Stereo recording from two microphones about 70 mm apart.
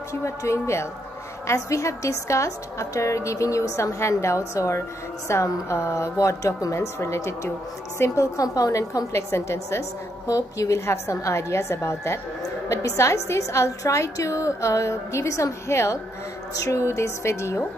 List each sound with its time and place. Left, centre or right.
0.1 s a woman's voice: left